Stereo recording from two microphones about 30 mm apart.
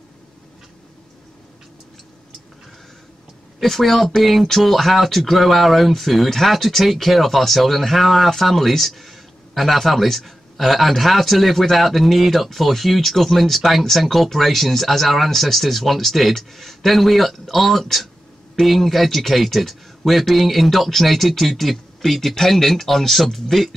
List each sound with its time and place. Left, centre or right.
3.6 s speech: centre